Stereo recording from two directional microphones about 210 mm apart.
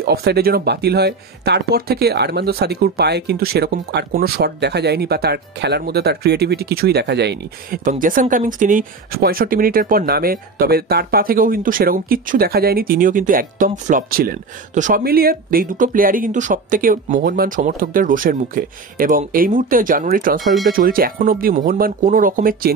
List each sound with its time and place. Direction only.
0.0 s speech: 50° right (ahead or behind)
20.3 s speech: centre (ahead or behind)
20.7 s speech: 45° right (ahead or behind)